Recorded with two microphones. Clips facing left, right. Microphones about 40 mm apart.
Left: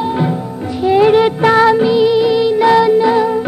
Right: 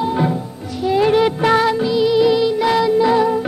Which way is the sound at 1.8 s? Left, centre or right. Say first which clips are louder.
Left 4 dB; left.